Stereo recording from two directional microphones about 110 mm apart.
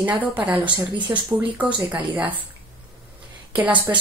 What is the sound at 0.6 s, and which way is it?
Speech, 45° right (ahead or behind).